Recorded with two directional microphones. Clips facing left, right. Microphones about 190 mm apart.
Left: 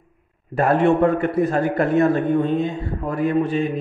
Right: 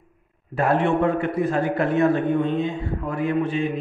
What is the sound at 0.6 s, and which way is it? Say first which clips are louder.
A man's voice: left 4 dB; 45° left (ahead or behind).